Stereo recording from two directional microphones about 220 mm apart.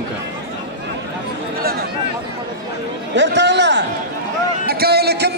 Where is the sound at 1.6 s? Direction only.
45° right (ahead or behind).